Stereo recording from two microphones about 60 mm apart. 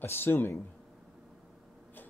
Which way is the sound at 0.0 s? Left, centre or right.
Left.